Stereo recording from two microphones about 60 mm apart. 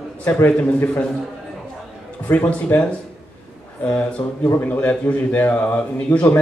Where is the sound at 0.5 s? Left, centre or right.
Left.